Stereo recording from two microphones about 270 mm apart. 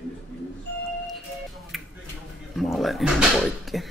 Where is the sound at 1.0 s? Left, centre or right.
Centre.